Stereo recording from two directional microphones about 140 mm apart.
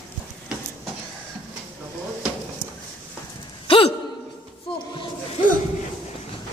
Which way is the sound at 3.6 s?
40° left (ahead or behind).